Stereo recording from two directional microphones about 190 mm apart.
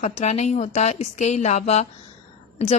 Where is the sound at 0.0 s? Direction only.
35° left (ahead or behind).